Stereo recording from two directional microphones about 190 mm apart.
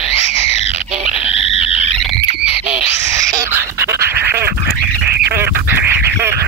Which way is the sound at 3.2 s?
15° right (ahead or behind).